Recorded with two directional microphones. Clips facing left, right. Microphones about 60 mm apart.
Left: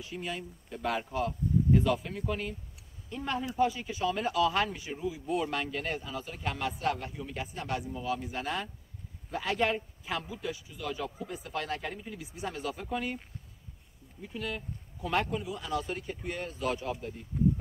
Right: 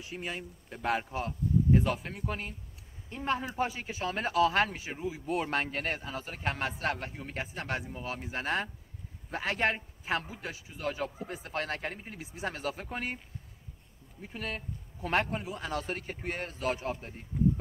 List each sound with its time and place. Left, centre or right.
0.1 s speech: right
14.2 s a man's voice: right